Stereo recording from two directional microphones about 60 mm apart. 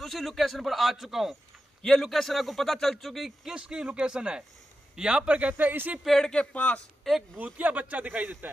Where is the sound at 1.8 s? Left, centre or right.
Centre; by 6.0 s right.